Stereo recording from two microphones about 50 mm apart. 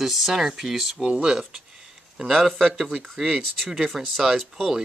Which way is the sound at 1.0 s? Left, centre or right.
Centre.